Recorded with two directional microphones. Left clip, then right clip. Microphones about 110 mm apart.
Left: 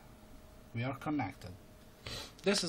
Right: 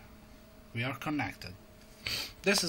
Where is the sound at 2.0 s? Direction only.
25° left (ahead or behind).